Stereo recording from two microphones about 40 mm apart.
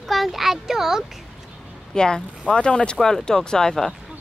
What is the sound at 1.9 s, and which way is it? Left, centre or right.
Speech, centre.